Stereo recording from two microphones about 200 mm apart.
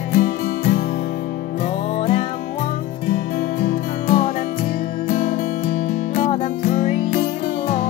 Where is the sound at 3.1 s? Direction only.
40° left (ahead or behind).